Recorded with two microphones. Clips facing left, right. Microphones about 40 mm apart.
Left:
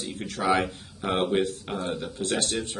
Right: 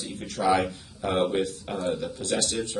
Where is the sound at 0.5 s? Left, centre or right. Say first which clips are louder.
Right 1 dB; left.